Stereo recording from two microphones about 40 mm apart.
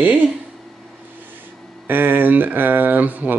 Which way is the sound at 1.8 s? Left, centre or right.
Right.